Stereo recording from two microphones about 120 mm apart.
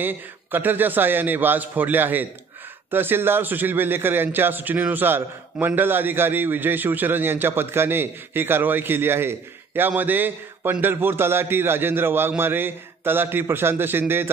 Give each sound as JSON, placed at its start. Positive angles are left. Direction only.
{"t": 0.0, "sound": "a man's voice", "side_deg": -15}